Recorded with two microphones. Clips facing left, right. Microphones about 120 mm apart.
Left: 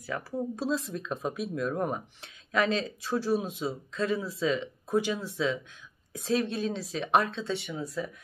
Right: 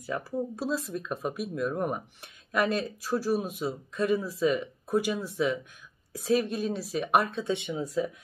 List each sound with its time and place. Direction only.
0.6 s speech: 10° right (ahead or behind)